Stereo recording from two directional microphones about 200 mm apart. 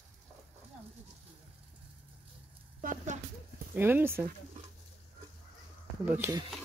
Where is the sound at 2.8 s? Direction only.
40° right (ahead or behind).